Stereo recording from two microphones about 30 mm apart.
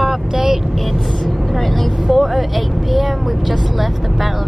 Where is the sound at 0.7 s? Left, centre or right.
Centre.